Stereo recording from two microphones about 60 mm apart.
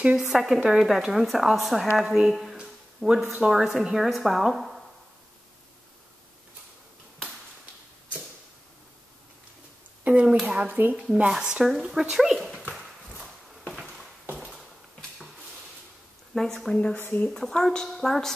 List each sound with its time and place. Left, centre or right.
0.0 s speech: centre
2.0 s speech: centre
10.0 s speech: right
10.7 s speech: right
11.2 s speech: centre
13.1 s walk: centre
16.3 s speech: centre
16.7 s speech: centre
17.3 s speech: centre